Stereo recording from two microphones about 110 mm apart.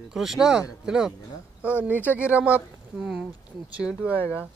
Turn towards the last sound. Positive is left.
turn(degrees=-10)  # may be behind; listen again after turning